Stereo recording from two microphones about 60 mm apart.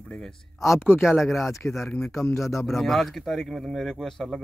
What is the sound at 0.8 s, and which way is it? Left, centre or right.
Speech, left.